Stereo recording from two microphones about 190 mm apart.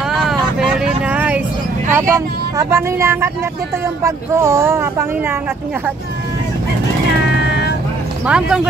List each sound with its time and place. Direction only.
0.1 s vehicle: centre (ahead or behind)
2.0 s speech: 15° right (ahead or behind)
7.3 s vehicle: 60° left (ahead or behind)
8.3 s speech: 5° right (ahead or behind)